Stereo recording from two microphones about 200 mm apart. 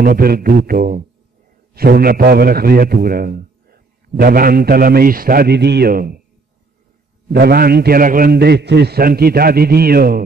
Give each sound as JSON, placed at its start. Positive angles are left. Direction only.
{"t": 0.0, "sound": "a man's voice", "side_deg": -50}
{"t": 7.2, "sound": "a man's voice", "side_deg": -50}